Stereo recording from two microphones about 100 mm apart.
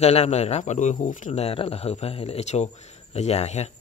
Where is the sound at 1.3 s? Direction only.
80° left.